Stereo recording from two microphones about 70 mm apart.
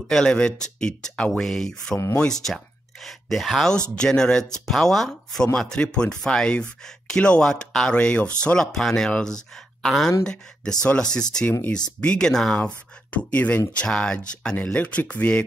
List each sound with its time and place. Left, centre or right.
0.1 s speech: centre